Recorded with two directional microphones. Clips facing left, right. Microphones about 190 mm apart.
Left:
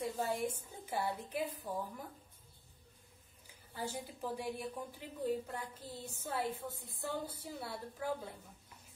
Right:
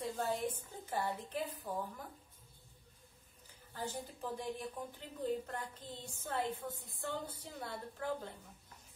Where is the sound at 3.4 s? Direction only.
10° left (ahead or behind).